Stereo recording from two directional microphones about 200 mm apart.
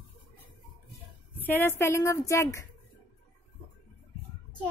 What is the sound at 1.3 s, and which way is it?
A woman's voice, 10° left (ahead or behind).